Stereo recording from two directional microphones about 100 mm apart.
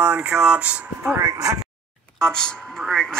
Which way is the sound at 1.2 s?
35° right (ahead or behind).